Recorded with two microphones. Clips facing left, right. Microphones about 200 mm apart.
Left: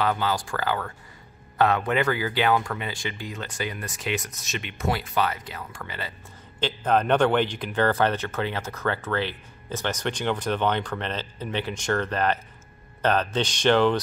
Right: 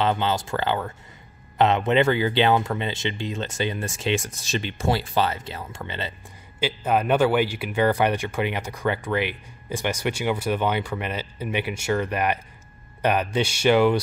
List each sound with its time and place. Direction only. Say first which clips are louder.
0.0 s speech: right 2 dB; 25° right (ahead or behind)
6.6 s speech: even; 10° right (ahead or behind)